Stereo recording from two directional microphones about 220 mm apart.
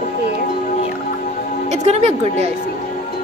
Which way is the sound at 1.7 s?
30° right (ahead or behind).